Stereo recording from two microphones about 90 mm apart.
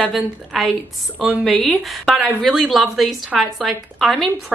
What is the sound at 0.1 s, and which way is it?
A woman's voice, centre (ahead or behind).